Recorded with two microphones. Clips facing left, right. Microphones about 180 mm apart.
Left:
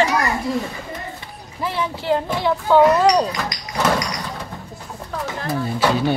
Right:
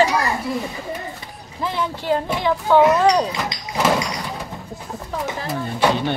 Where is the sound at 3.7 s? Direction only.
5° right (ahead or behind).